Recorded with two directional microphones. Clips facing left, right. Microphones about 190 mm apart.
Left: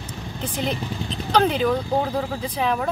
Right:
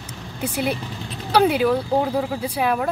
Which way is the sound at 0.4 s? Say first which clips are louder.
Right 3 dB; 10° right (ahead or behind).